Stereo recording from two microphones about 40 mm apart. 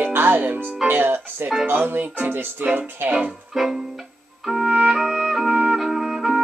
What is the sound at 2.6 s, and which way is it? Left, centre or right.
Speech, right.